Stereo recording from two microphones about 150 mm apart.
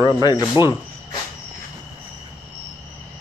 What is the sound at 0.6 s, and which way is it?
Speech, 30° left (ahead or behind).